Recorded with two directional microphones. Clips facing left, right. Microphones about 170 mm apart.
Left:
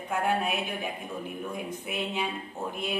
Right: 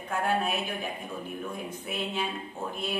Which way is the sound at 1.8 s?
15° left (ahead or behind).